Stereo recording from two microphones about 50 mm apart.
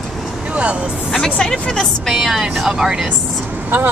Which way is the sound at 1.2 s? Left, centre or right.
Centre.